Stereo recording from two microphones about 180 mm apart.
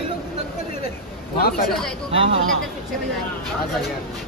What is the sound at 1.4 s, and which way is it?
Speech, 60° left (ahead or behind).